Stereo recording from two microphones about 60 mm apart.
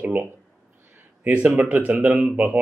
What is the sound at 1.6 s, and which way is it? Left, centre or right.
A man's voice, right.